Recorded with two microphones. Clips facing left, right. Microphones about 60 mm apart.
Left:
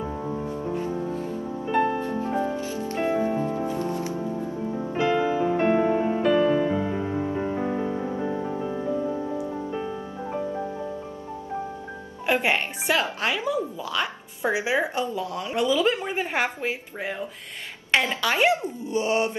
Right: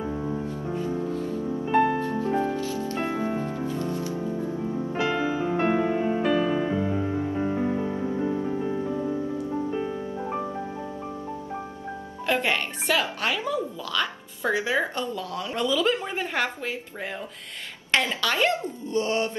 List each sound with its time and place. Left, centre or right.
2.0 s music: left
3.2 s music: right
3.6 s music: left
4.9 s music: centre
12.3 s music: centre
13.2 s speech: centre